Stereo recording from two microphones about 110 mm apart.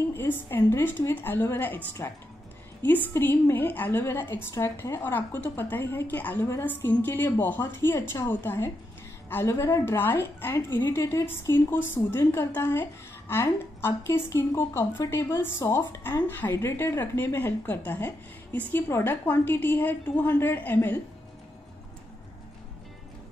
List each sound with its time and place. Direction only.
0.1 s a woman's voice: 20° left (ahead or behind)